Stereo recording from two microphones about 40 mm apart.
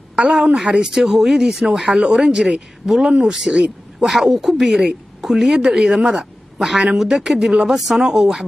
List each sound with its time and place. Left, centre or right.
0.1 s a woman's voice: right
0.6 s a woman's voice: centre